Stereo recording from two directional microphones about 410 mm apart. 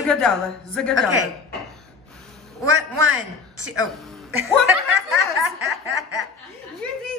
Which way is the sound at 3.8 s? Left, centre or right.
Centre.